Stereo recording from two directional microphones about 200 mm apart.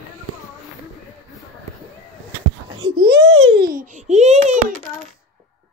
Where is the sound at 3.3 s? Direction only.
90° right.